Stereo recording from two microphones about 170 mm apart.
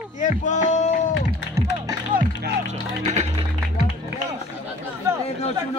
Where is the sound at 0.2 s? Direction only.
50° left (ahead or behind).